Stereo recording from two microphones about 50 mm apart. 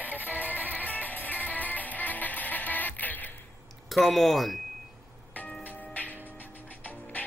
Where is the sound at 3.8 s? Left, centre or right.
Centre.